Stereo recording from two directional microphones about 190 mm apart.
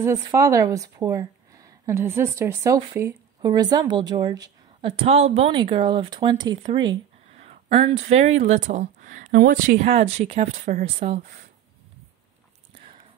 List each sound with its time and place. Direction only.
0.0 s a woman's voice: 15° right (ahead or behind); by 9.8 s 45° right (ahead or behind)
9.8 s speech: 35° right (ahead or behind)